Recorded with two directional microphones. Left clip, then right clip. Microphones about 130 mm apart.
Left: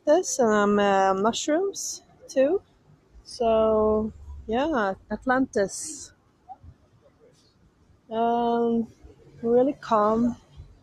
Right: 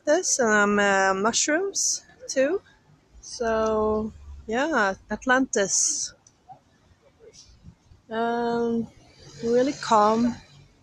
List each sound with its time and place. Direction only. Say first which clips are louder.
0.0 s a woman's voice: left 1 dB; centre (ahead or behind); by 5.8 s 15° right (ahead or behind)
8.1 s speech: left 2 dB; 10° right (ahead or behind)